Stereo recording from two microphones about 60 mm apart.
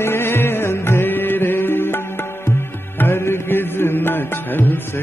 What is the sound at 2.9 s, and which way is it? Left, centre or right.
Music, left.